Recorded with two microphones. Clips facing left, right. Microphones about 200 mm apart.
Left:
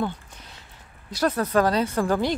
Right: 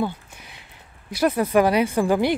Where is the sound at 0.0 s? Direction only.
10° right (ahead or behind).